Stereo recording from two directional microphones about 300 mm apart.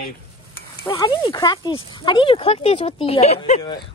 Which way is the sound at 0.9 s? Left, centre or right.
Centre.